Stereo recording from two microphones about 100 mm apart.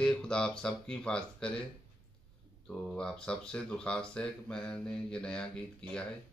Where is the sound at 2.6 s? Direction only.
10° left (ahead or behind).